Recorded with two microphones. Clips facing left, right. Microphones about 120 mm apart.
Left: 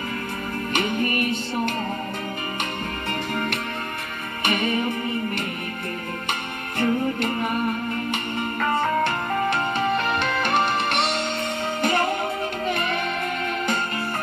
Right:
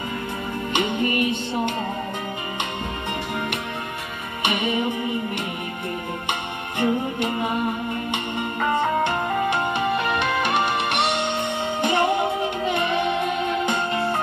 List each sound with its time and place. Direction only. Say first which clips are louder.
0.7 s music: right 2 dB; 20° right (ahead or behind)
4.6 s music: right 1 dB; 15° right (ahead or behind)
6.8 s music: even; 20° right (ahead or behind)
9.5 s music: even; 10° right (ahead or behind)
11.8 s music: right 3 dB; 20° right (ahead or behind)